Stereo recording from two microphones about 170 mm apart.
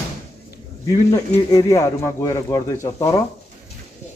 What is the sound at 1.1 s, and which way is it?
Speech, 20° left (ahead or behind).